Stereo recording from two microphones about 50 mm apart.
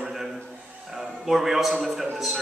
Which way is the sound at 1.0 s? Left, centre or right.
Centre.